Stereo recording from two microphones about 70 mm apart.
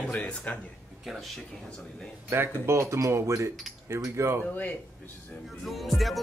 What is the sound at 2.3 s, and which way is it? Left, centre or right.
Speech, right.